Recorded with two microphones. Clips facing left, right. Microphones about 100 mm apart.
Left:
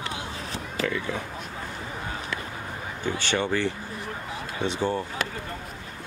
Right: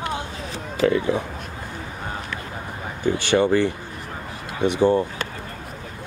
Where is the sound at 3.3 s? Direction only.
15° right (ahead or behind).